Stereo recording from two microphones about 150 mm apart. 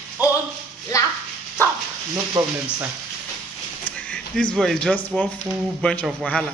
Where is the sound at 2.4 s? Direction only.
20° right (ahead or behind).